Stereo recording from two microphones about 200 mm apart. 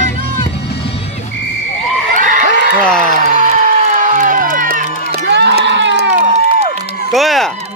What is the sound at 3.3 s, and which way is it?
Music, 35° right (ahead or behind).